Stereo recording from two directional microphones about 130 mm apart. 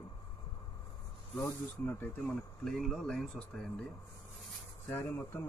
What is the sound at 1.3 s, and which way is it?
Speech, 20° left (ahead or behind).